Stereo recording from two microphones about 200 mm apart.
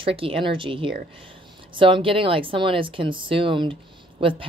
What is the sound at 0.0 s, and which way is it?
A woman's voice, 25° right (ahead or behind).